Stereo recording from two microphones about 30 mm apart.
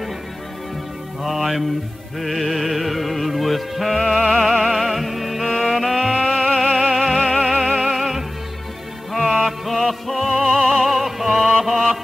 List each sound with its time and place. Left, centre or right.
1.2 s music: centre
7.2 s music: centre
7.6 s music: centre